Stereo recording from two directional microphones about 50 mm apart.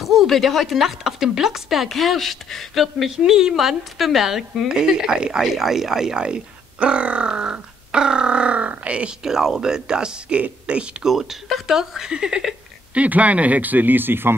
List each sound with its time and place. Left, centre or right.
0.0 s speech: centre; by 9.1 s right
9.2 s speech: centre
11.1 s speech: centre
13.0 s speech: right